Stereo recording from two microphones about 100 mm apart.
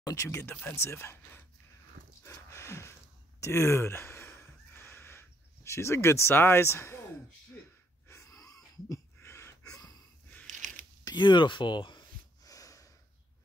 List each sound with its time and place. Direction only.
0.0 s speech: 35° left (ahead or behind)
2.2 s a sound: 25° left (ahead or behind)
8.1 s wheeze: 30° left (ahead or behind)
11.1 s speech: 50° left (ahead or behind)
12.4 s snort: 35° left (ahead or behind)